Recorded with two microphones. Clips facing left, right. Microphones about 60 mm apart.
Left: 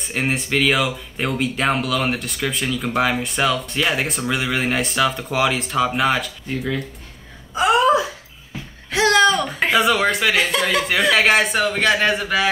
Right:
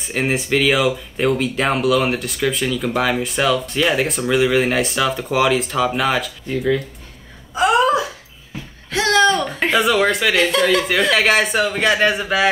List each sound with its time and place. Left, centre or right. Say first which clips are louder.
0.0 s speech: right 2 dB; centre
8.9 s a sound: even; centre
9.4 s speech: even; centre